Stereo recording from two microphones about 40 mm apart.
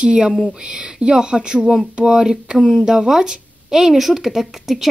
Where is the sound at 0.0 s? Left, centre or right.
Right.